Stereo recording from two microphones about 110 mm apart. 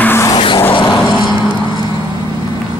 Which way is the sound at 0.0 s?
20° left (ahead or behind).